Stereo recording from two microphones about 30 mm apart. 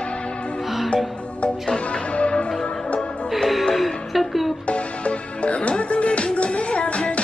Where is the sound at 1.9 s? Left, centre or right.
Left.